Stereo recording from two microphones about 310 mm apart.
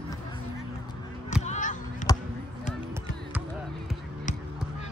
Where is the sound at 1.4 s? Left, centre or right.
Left.